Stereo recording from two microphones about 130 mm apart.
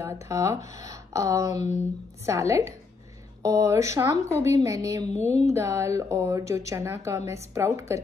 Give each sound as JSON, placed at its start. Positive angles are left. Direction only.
{"t": 0.0, "sound": "speech", "side_deg": -25}